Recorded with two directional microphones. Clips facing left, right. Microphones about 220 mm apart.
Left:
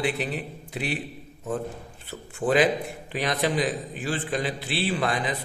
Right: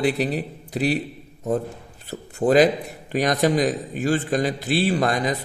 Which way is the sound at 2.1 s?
40° right (ahead or behind).